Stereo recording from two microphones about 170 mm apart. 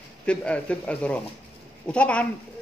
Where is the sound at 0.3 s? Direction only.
5° left (ahead or behind).